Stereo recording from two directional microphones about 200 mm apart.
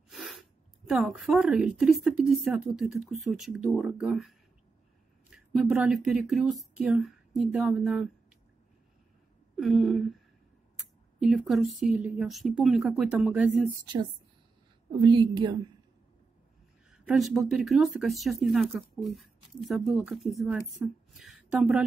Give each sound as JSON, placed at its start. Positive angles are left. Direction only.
{"t": 0.1, "sound": "speech", "side_deg": 0}
{"t": 9.6, "sound": "speech", "side_deg": 0}
{"t": 15.0, "sound": "a woman's voice", "side_deg": -20}
{"t": 16.9, "sound": "a woman's voice", "side_deg": -5}